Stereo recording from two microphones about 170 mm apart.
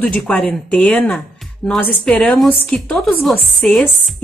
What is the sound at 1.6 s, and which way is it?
Speech, 5° left (ahead or behind).